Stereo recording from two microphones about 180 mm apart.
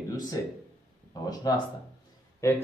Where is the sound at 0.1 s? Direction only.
20° left (ahead or behind).